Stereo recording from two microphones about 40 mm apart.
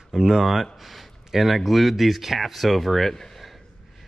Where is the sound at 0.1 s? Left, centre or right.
Centre.